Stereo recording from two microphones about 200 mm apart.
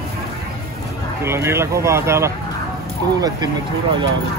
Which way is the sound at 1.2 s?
10° right (ahead or behind).